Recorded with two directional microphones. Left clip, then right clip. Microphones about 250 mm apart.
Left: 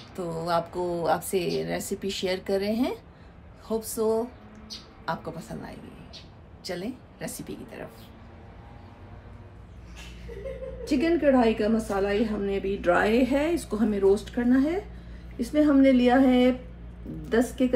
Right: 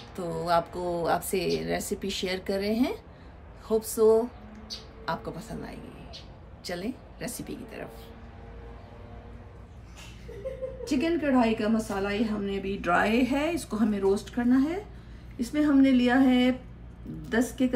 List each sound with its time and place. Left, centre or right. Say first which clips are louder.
0.1 s a woman's voice: right 1 dB; centre
10.9 s a woman's voice: left 5 dB; centre